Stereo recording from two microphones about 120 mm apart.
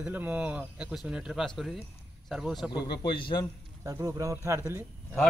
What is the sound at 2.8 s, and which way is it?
Speech, 40° left (ahead or behind).